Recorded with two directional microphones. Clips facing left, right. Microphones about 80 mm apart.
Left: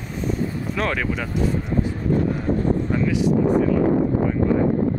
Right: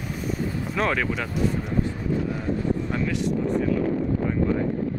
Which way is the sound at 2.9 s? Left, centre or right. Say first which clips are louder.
Left 5 dB; centre.